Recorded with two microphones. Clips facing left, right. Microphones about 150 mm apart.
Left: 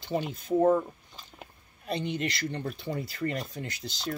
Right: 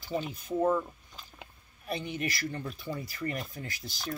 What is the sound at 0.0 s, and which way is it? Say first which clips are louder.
Speech: left 3 dB; 25° left (ahead or behind).